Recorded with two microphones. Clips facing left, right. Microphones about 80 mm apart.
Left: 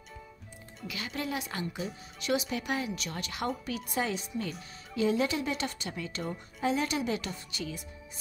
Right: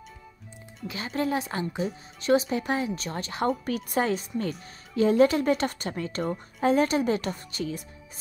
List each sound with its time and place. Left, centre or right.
0.8 s a woman's voice: right